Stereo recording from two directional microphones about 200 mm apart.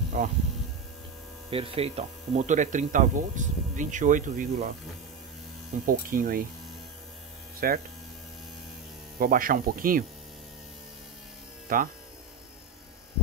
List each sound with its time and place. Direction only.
0.2 s speech: 40° right (ahead or behind)
1.5 s speech: 30° right (ahead or behind)
5.9 s speech: 45° right (ahead or behind)
7.6 s speech: 45° right (ahead or behind)
9.2 s speech: 45° right (ahead or behind)
11.7 s speech: 45° right (ahead or behind)